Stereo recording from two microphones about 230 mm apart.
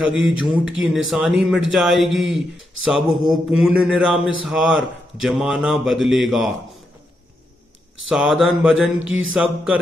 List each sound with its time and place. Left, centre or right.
0.1 s mantra: centre
8.1 s mantra: centre
9.0 s mantra: right
9.3 s mantra: centre